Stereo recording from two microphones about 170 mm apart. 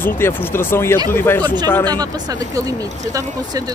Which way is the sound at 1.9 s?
25° right (ahead or behind).